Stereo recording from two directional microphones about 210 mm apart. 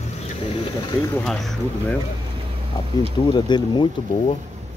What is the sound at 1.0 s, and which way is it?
Speech, 5° left (ahead or behind).